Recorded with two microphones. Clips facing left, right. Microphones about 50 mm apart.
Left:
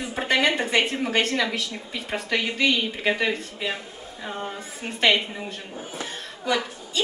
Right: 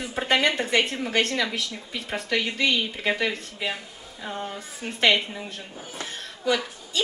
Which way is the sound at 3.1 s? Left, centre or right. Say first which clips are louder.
Left 2 dB; centre.